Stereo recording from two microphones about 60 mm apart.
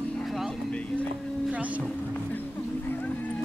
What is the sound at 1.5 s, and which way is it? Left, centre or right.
Speech, right.